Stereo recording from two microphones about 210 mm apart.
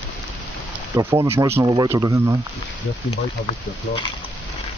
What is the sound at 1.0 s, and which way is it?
Speech, 15° right (ahead or behind).